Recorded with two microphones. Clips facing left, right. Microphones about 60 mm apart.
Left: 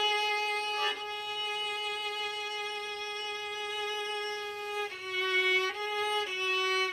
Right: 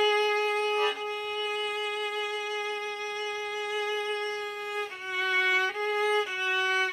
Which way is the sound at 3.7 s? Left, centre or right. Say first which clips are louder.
Right 6 dB; centre.